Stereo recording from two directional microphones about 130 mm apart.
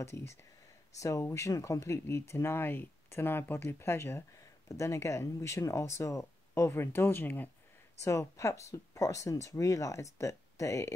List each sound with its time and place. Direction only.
0.0 s speech: 20° left (ahead or behind)